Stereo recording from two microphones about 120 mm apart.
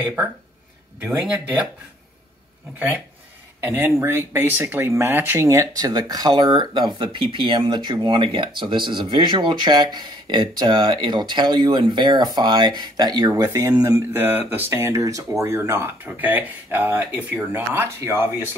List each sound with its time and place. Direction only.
0.0 s speech: 10° right (ahead or behind)
3.6 s speech: 20° right (ahead or behind)